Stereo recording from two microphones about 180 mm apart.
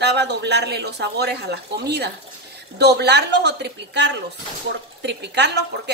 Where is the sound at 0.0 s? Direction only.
70° right (ahead or behind).